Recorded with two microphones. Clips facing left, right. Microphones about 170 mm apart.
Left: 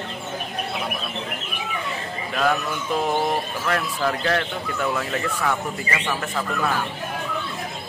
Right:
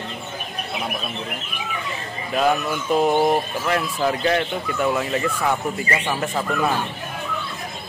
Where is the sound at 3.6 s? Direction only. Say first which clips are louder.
Even; 15° right (ahead or behind).